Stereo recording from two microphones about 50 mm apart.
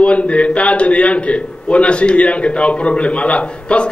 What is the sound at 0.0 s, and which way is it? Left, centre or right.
A man's voice, left.